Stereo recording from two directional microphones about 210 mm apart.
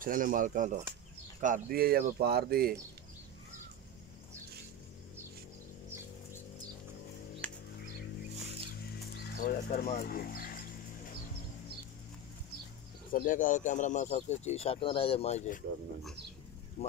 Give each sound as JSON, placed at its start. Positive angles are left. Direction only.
{"t": 0.0, "sound": "speech", "side_deg": -40}
{"t": 7.4, "sound": "music", "side_deg": 5}
{"t": 9.1, "sound": "music", "side_deg": 50}
{"t": 9.9, "sound": "speech", "side_deg": 45}
{"t": 13.1, "sound": "speech", "side_deg": 40}
{"t": 16.8, "sound": "speech", "side_deg": 30}